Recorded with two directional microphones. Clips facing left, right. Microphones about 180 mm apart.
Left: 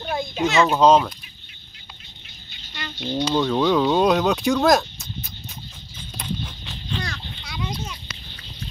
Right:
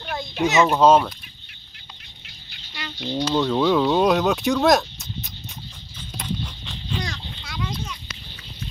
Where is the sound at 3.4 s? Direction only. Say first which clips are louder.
Even; centre (ahead or behind).